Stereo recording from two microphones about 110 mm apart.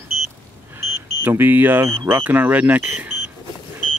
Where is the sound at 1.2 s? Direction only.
20° right (ahead or behind).